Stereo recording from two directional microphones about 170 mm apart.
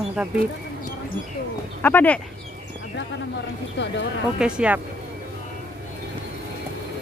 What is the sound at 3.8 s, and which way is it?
Speech, 90° left.